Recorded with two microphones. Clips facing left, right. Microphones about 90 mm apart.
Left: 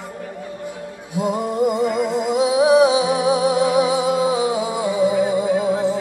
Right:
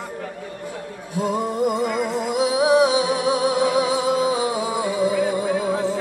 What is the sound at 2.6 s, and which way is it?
Music, 15° left (ahead or behind).